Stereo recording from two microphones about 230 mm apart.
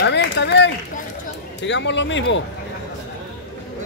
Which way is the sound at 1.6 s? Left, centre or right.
Left.